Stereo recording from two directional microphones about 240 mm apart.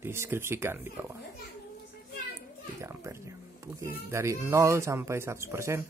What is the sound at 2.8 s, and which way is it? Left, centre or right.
Speech, centre.